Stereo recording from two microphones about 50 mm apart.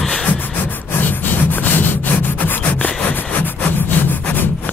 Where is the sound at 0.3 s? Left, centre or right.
Left.